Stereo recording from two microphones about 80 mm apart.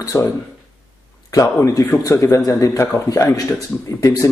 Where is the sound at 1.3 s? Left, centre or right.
Left.